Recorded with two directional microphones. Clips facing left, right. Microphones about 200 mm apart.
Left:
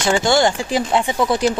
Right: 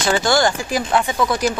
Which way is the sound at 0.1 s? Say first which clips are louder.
Left 1 dB; 25° left (ahead or behind).